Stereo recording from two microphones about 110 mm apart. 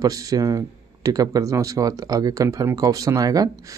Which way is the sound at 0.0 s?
35° right (ahead or behind).